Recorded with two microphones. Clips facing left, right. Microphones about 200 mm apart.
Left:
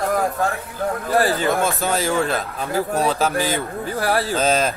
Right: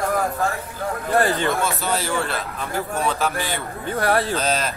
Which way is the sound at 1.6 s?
50° left (ahead or behind).